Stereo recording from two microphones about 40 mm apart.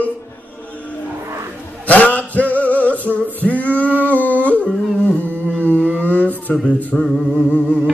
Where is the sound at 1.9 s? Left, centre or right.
Left.